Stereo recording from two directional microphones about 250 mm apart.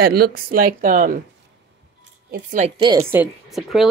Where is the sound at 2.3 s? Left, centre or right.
Right.